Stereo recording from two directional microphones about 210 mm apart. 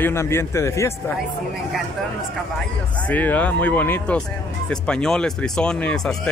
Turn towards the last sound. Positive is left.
turn(degrees=5)  # may be behind; listen again after turning